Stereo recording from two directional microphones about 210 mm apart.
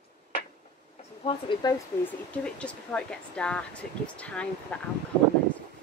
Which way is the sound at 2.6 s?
5° left (ahead or behind).